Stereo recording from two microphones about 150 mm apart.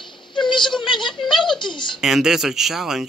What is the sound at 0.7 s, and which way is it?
Speech, 30° left (ahead or behind).